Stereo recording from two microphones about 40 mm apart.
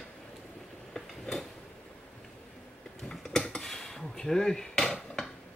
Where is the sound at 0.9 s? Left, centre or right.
Centre.